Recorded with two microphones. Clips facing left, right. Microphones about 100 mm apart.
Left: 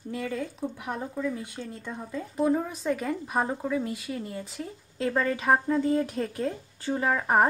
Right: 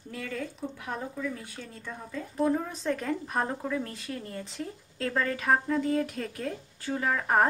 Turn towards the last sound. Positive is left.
turn(degrees=20)  # may be behind; listen again after turning